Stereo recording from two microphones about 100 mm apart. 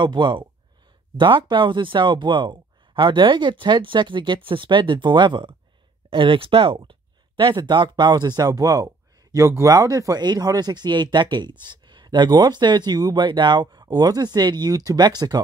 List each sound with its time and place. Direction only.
0.0 s speech: 50° right (ahead or behind)